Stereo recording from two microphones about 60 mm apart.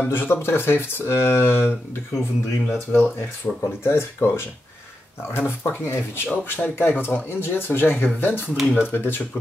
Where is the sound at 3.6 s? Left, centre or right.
Left.